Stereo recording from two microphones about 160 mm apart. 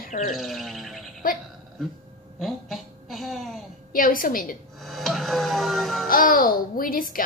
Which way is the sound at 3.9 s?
60° left (ahead or behind).